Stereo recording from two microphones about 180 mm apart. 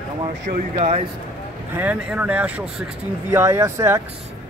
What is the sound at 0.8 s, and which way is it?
Speech, 40° right (ahead or behind).